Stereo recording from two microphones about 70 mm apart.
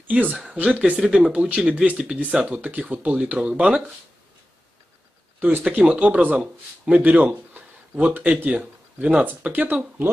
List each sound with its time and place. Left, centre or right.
0.0 s speech: right
5.4 s speech: right